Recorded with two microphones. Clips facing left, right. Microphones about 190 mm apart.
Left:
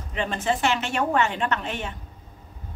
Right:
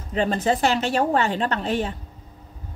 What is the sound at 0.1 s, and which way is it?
A woman's voice, 35° right (ahead or behind).